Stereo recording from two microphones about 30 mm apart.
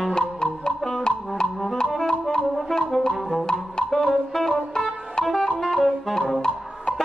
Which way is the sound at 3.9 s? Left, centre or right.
Centre.